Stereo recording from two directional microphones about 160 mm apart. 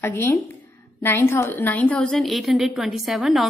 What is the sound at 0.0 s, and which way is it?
A woman's voice, 15° left (ahead or behind).